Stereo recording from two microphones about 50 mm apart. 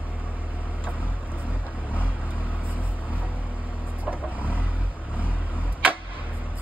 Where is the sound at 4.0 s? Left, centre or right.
Right.